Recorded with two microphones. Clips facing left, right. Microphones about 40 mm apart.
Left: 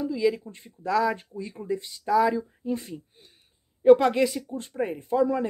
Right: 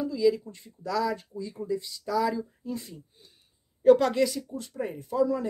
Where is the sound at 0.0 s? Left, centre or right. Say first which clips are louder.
Even; left.